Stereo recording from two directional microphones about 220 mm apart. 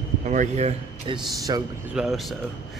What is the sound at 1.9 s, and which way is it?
Speech, centre (ahead or behind).